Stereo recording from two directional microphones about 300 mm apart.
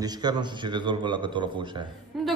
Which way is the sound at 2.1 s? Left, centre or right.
Centre.